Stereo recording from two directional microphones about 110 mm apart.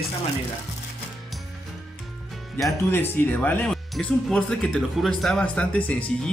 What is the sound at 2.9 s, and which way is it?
A man's voice, 20° left (ahead or behind).